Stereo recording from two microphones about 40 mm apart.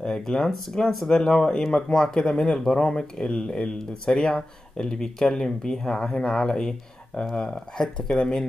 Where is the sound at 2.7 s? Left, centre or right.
Left.